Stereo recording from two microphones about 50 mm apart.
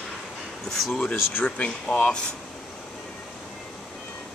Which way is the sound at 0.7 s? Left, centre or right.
Centre.